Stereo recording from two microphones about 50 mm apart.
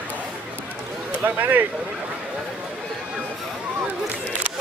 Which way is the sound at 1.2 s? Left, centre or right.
Right.